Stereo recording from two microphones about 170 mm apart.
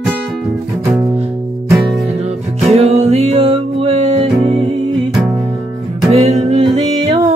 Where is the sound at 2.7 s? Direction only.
35° right (ahead or behind).